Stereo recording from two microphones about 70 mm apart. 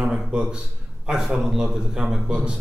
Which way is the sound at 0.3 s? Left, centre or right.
Centre.